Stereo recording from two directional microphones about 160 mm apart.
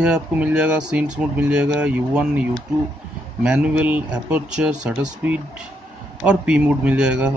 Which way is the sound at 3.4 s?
5° right (ahead or behind).